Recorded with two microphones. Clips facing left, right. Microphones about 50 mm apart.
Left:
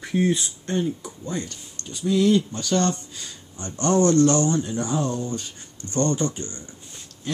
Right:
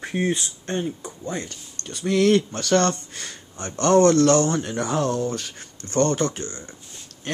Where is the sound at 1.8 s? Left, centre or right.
Right.